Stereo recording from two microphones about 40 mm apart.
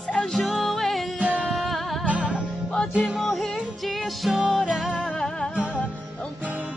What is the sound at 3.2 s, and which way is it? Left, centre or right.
Music, centre.